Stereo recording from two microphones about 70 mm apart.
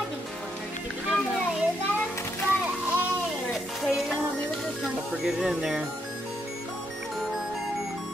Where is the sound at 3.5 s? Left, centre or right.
Centre.